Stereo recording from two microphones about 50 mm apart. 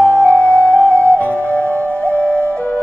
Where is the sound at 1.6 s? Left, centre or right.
Right.